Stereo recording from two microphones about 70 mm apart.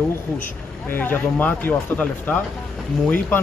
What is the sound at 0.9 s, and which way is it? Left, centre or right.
A man's voice, left.